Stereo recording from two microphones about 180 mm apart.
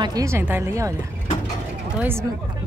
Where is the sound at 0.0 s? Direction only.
20° right (ahead or behind).